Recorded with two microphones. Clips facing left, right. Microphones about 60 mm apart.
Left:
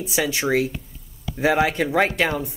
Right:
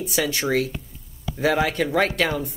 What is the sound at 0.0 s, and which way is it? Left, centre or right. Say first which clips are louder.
Speech: left 1 dB; left.